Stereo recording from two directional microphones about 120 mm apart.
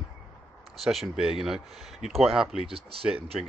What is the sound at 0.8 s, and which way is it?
Speech, 5° right (ahead or behind).